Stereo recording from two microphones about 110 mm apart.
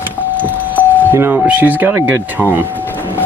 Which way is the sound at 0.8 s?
15° left (ahead or behind).